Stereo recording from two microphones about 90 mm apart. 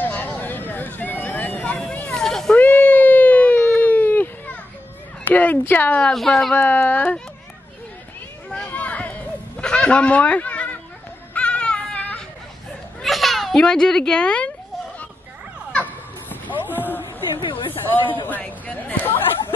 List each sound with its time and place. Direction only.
0.0 s vehicle: 20° left (ahead or behind); by 2.5 s 5° left (ahead or behind)
2.5 s cat: 20° left (ahead or behind)
3.8 s baby cry: 20° left (ahead or behind)
5.3 s speech: 20° left (ahead or behind)
6.1 s speech: centre (ahead or behind)
6.5 s speech: 20° left (ahead or behind)
8.5 s a sound: 15° left (ahead or behind)
11.3 s baby cry: 15° left (ahead or behind)
13.0 s a child's voice: centre (ahead or behind)
15.7 s children playing: 15° left (ahead or behind)
17.0 s a sound: 70° left (ahead or behind)
18.2 s speech: 20° left (ahead or behind)